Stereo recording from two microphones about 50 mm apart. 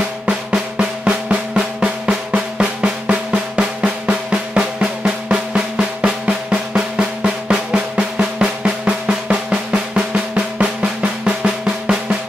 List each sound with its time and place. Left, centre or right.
0.3 s drum: centre